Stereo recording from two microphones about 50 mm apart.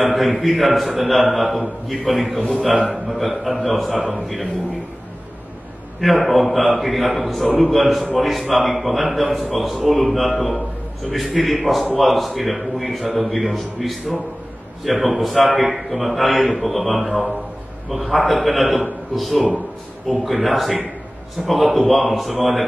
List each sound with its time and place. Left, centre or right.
0.0 s a man's voice: centre
2.3 s a man's voice: left
2.9 s a man's voice: centre
5.9 s a man's voice: centre
18.1 s a man's voice: centre